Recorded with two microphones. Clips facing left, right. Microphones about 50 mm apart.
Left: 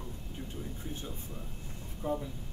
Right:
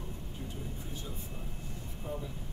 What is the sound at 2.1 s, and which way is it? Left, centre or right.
Speech, left.